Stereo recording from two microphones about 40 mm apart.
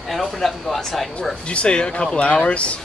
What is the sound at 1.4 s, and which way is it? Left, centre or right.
Speech, left.